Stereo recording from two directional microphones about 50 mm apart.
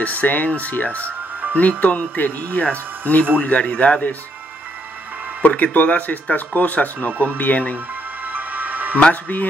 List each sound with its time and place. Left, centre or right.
0.0 s speech: left
5.4 s speech: left
8.3 s music: right
9.1 s speech: left